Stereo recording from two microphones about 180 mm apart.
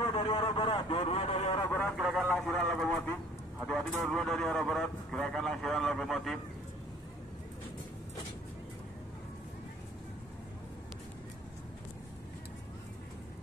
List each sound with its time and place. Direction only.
0.1 s vehicle: 30° left (ahead or behind)
1.7 s a man's voice: 10° left (ahead or behind)